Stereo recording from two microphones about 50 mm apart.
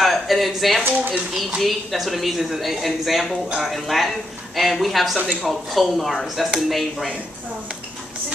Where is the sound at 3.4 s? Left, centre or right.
Centre.